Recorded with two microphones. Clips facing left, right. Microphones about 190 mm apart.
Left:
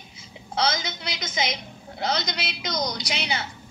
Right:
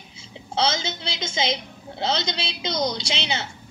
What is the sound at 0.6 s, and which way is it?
A woman's voice, 25° right (ahead or behind).